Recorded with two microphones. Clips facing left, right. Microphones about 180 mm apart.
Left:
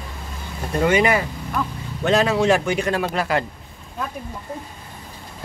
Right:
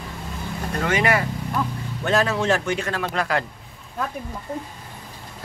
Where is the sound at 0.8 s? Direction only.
15° left (ahead or behind).